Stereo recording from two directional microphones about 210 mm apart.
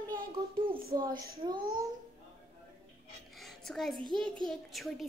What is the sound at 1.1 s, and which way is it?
Child singing, 45° right (ahead or behind).